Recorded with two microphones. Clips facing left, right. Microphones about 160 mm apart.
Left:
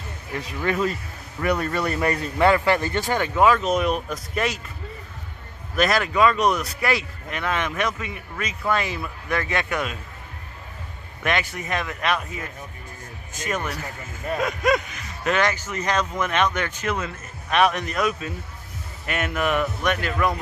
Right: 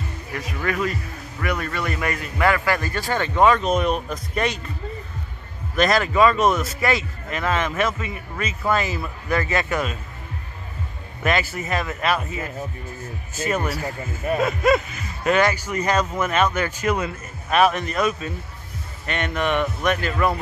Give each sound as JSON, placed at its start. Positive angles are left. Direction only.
{"t": 0.3, "sound": "a man's voice", "side_deg": 25}
{"t": 5.8, "sound": "speech", "side_deg": 0}
{"t": 11.2, "sound": "speech", "side_deg": -5}
{"t": 14.2, "sound": "speech", "side_deg": -5}